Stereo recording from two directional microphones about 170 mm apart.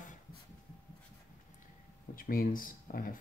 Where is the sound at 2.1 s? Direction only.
55° left (ahead or behind).